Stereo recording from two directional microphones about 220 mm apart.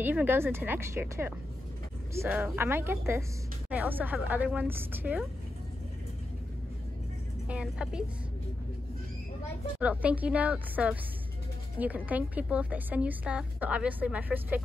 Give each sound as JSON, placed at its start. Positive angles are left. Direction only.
{"t": 0.0, "sound": "a woman's voice", "side_deg": -10}
{"t": 7.4, "sound": "speech", "side_deg": -5}
{"t": 9.8, "sound": "a woman's voice", "side_deg": -5}